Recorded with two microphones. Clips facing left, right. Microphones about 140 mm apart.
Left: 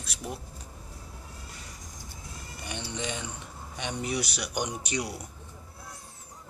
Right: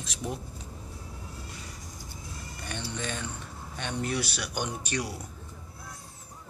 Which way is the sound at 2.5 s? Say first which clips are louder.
Left 1 dB; 15° left (ahead or behind).